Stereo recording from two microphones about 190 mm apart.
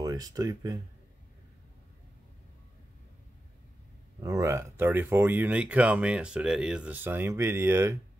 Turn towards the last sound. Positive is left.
turn(degrees=-15)  # may be behind; listen again after turning